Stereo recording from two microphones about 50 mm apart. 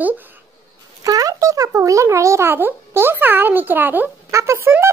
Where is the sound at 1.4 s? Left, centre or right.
Right.